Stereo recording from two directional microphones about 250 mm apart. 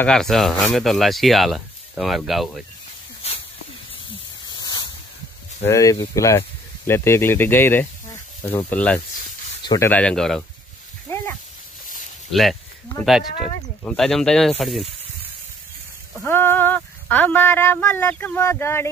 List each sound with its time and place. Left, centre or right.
0.0 s speech: centre
4.5 s a sound: centre
5.7 s speech: centre
11.1 s a sound: centre
12.3 s speech: centre
13.8 s speech: centre
16.2 s speech: centre